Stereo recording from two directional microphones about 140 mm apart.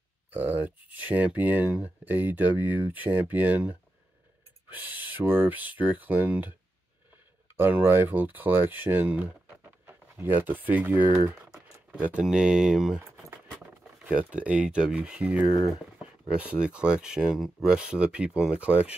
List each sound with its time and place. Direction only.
0.3 s speech: 10° right (ahead or behind)
4.7 s speech: 15° right (ahead or behind)
7.5 s speech: 15° right (ahead or behind)
13.0 s keys jangling: 20° right (ahead or behind)
14.0 s speech: 10° right (ahead or behind)